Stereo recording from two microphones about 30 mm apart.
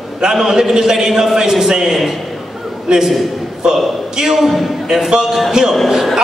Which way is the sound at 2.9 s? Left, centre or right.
Right.